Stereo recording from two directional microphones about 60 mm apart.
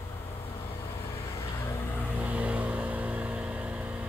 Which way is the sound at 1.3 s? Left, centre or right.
Left.